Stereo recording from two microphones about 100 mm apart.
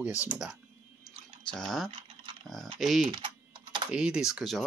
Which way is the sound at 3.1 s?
55° right (ahead or behind).